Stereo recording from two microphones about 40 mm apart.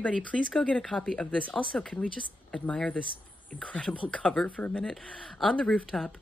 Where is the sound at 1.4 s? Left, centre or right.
Left.